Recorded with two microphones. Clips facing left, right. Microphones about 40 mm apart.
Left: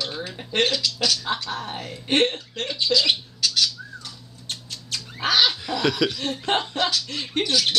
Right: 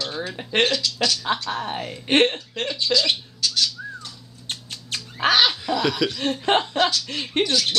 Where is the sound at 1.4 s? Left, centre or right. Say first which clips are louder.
Right 3 dB; right.